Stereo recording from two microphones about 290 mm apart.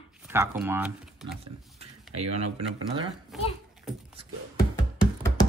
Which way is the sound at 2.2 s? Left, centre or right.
Right.